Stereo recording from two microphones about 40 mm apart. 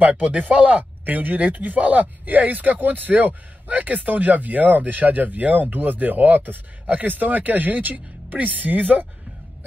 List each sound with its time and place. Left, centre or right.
0.4 s speech: right